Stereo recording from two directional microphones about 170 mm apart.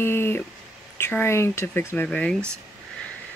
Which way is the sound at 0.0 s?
15° left (ahead or behind).